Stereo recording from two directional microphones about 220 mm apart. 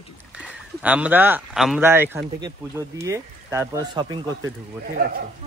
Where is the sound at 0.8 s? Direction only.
5° right (ahead or behind).